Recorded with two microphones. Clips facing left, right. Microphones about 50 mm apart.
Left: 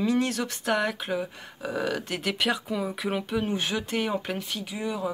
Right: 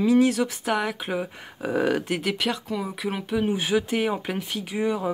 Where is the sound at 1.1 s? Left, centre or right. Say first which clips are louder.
Right 1 dB; centre.